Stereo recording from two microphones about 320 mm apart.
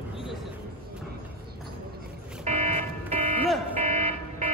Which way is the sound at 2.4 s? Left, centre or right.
Right.